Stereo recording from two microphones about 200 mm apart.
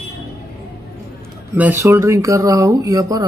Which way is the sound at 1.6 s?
10° right (ahead or behind).